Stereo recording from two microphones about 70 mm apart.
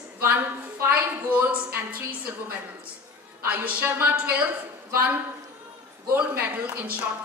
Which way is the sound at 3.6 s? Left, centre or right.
Right.